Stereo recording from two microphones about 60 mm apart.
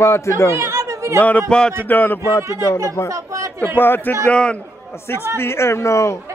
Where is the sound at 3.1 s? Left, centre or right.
Right.